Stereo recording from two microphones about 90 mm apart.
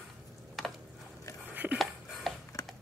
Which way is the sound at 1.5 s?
20° right (ahead or behind).